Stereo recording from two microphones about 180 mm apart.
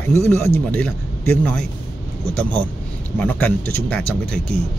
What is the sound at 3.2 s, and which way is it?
A man's voice, 10° left (ahead or behind).